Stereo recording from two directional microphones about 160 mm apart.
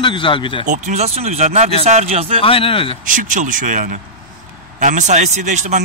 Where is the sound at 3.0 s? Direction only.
55° right (ahead or behind).